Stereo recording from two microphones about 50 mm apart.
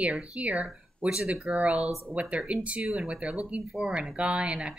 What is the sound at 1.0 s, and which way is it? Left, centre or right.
Speech, centre.